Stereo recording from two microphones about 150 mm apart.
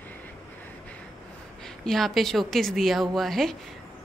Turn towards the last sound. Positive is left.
turn(degrees=0)  # may be behind; listen again after turning